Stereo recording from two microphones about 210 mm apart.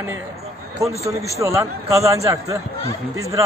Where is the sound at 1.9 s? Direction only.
15° right (ahead or behind).